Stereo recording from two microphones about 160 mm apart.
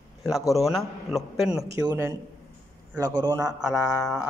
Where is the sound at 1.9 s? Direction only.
15° right (ahead or behind).